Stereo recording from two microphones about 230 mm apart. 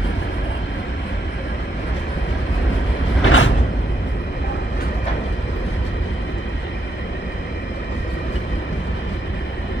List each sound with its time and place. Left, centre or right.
3.3 s vehicle: left